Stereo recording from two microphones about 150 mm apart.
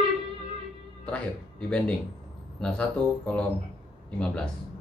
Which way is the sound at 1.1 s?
10° left (ahead or behind).